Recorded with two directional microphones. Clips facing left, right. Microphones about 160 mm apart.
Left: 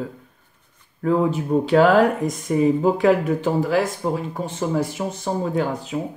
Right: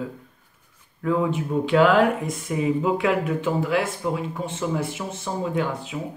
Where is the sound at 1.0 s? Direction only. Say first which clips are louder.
Left 3 dB; 35° left (ahead or behind).